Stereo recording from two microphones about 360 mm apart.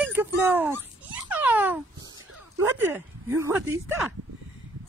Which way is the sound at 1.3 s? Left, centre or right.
Centre.